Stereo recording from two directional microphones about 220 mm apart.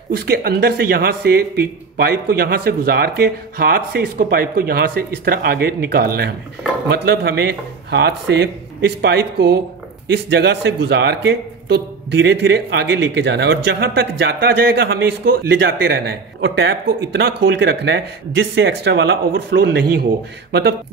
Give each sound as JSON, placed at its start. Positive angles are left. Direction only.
{"t": 0.1, "sound": "a man's voice", "side_deg": -45}